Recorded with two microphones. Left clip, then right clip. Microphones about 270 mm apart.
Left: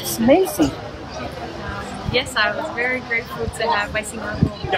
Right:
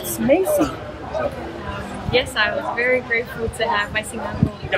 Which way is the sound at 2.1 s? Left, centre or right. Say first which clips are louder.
Right 1 dB; centre.